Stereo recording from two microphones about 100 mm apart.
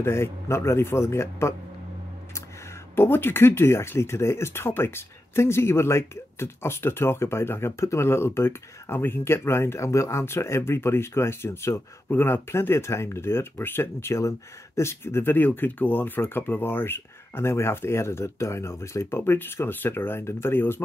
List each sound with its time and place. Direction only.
0.0 s speech: 25° left (ahead or behind)
3.0 s speech: 20° left (ahead or behind)